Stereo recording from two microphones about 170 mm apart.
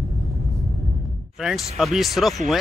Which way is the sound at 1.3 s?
Centre (ahead or behind).